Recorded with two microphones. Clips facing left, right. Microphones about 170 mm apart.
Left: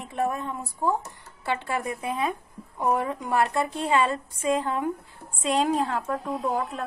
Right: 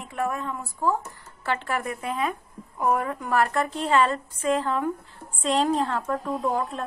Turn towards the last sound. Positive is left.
turn(degrees=0)  # may be behind; listen again after turning